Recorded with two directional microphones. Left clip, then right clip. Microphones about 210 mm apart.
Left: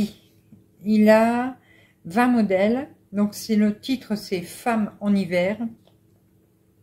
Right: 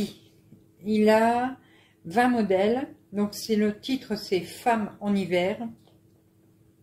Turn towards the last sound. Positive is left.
turn(degrees=0)  # may be behind; listen again after turning